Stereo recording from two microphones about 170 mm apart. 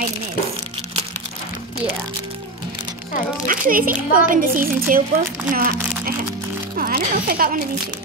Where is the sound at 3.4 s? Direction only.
55° right (ahead or behind).